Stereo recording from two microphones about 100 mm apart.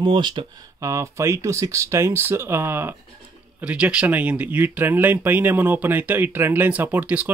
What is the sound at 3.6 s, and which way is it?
Speech, 10° right (ahead or behind).